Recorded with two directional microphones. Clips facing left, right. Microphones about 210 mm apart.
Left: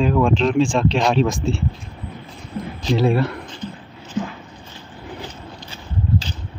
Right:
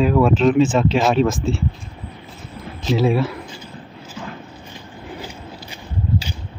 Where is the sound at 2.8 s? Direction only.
Centre (ahead or behind).